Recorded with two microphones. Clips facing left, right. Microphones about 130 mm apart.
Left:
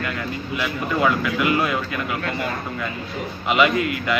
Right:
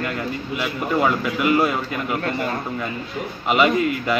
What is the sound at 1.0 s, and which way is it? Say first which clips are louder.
Speech: left 1 dB; 40° right (ahead or behind).